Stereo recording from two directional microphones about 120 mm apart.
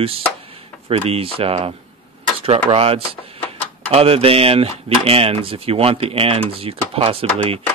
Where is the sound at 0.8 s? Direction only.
55° right (ahead or behind).